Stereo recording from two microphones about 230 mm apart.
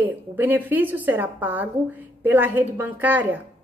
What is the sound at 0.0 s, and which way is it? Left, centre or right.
A woman's voice, centre.